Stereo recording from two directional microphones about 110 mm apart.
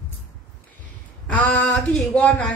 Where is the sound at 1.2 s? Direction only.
15° left (ahead or behind).